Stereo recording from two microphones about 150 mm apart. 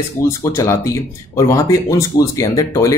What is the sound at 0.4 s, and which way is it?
Speech, 20° left (ahead or behind).